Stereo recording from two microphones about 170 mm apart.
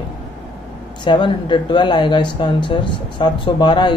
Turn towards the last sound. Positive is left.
turn(degrees=25)  # may be behind; listen again after turning